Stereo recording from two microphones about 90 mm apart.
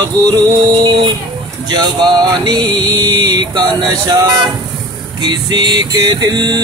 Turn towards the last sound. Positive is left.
turn(degrees=-50)  # may be behind; listen again after turning